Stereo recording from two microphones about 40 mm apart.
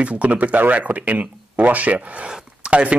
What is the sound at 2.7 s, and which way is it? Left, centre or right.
Speech, right.